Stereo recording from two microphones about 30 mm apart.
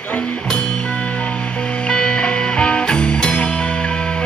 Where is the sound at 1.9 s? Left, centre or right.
Left.